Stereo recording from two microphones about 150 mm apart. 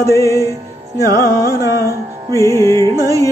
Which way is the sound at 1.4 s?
20° right (ahead or behind).